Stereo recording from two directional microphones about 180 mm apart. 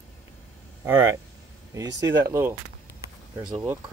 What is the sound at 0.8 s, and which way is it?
Speech, 15° right (ahead or behind).